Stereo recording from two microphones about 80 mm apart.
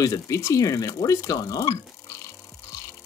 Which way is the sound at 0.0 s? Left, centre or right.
Left.